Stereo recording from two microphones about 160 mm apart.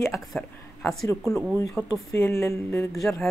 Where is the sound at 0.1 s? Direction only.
Centre (ahead or behind).